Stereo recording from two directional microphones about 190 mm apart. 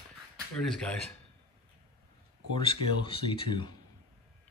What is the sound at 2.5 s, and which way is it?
Speech, 25° left (ahead or behind).